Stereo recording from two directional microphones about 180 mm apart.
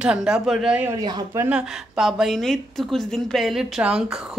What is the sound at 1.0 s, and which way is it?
Speech, 20° right (ahead or behind).